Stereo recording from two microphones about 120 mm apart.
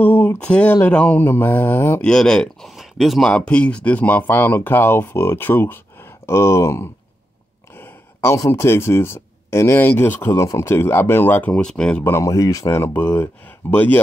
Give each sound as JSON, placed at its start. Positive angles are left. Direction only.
{"t": 0.0, "sound": "speech", "side_deg": 15}
{"t": 2.0, "sound": "speech", "side_deg": 5}
{"t": 12.0, "sound": "speech", "side_deg": 25}